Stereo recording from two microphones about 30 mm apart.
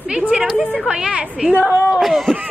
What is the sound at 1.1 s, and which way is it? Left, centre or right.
Speech, right.